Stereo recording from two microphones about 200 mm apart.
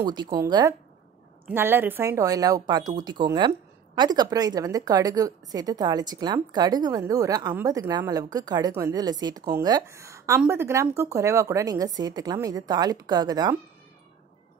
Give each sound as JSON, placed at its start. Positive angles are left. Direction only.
{"t": 0.0, "sound": "speech", "side_deg": -20}